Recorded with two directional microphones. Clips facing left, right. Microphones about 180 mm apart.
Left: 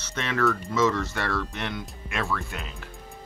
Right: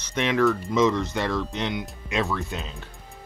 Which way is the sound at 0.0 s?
15° right (ahead or behind).